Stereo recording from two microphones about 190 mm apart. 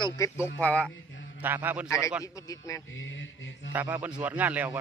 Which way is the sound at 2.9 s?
80° left.